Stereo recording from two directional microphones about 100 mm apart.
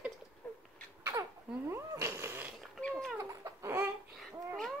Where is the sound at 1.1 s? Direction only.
30° right (ahead or behind).